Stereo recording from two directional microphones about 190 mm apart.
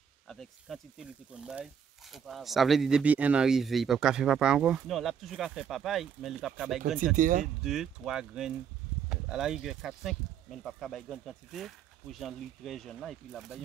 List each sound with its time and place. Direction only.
0.3 s speech: centre (ahead or behind)
7.2 s speech: 45° right (ahead or behind)
7.6 s speech: centre (ahead or behind)